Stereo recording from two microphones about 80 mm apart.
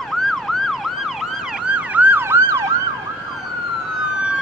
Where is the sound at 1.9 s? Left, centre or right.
Right.